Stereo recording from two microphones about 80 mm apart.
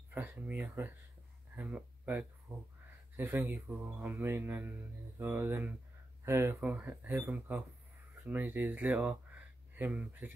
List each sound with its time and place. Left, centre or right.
0.1 s speech: right